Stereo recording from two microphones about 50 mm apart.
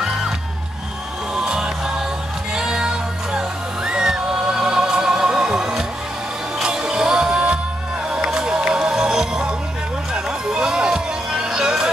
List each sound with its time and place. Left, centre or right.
0.0 s music: centre
1.3 s music: centre